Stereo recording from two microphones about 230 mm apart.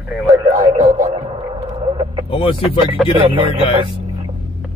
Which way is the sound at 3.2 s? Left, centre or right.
Right.